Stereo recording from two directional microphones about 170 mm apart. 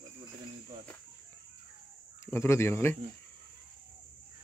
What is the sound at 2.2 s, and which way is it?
Speech, 15° left (ahead or behind).